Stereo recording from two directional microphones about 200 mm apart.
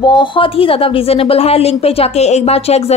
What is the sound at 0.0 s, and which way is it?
Speech, 20° left (ahead or behind).